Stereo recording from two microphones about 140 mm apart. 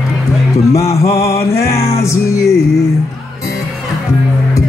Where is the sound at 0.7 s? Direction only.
20° left (ahead or behind).